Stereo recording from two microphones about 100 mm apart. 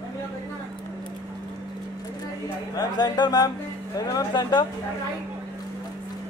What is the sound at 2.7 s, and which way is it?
Speech, 45° left (ahead or behind).